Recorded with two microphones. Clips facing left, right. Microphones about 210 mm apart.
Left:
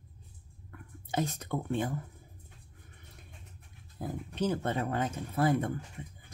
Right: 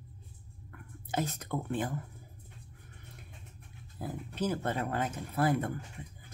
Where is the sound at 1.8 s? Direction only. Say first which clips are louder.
Left 1 dB; 25° left (ahead or behind).